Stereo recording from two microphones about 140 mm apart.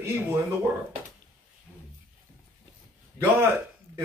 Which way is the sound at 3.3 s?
20° right (ahead or behind).